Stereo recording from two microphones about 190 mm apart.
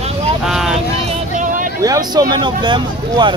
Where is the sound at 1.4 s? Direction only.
45° right (ahead or behind).